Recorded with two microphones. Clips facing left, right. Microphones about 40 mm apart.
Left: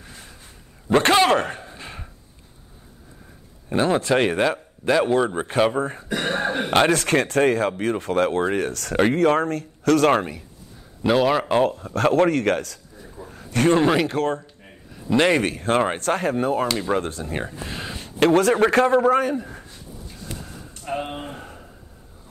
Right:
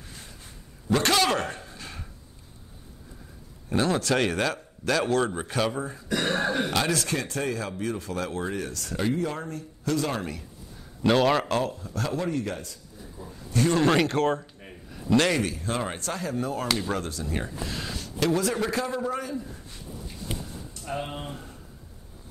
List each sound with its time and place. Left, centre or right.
0.8 s a man's voice: left
3.7 s a man's voice: left
5.8 s speech: left
6.0 s a man's voice: left
6.8 s speech: left
11.0 s a man's voice: centre
11.6 s speech: left
13.3 s a sound: left
13.8 s speech: centre
15.1 s a man's voice: left
15.4 s a man's voice: left
18.2 s speech: left
20.8 s speech: left